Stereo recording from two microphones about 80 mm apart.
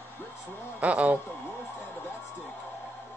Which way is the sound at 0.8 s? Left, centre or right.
Centre.